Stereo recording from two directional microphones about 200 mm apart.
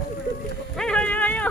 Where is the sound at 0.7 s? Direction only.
5° left (ahead or behind).